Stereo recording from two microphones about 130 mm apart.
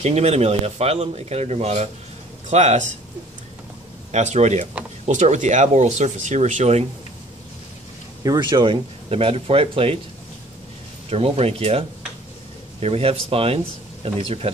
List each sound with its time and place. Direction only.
0.0 s speech: 55° right (ahead or behind)
4.1 s speech: 60° right (ahead or behind)
8.2 s speech: 30° right (ahead or behind); by 9.9 s 45° right (ahead or behind)
11.1 s speech: 50° right (ahead or behind)
12.8 s speech: 50° right (ahead or behind)